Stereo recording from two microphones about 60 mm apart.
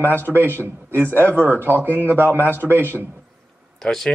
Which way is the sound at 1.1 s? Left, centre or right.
Left.